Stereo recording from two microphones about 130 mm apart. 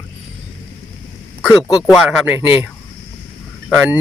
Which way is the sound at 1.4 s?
5° right (ahead or behind).